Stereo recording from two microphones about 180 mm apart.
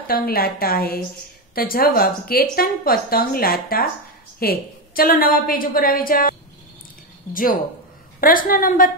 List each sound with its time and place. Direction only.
0.0 s a woman's voice: 55° left (ahead or behind)
8.2 s a woman's voice: 50° left (ahead or behind)